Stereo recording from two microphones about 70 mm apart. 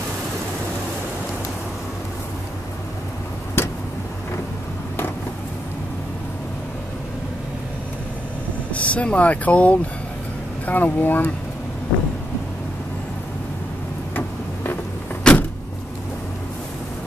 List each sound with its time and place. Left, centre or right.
3.6 s vehicle: left
8.7 s speech: centre
14.1 s a sound: left
15.3 s vehicle: centre